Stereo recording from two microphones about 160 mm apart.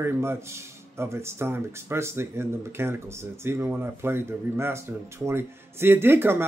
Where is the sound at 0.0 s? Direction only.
15° right (ahead or behind).